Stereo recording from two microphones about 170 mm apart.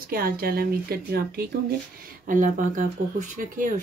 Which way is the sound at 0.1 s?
60° right (ahead or behind).